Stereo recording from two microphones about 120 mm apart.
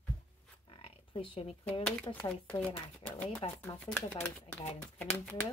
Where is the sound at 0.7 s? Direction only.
50° left (ahead or behind).